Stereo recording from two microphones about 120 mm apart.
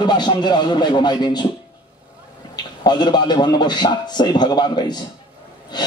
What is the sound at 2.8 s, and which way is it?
A man's voice, 35° left (ahead or behind).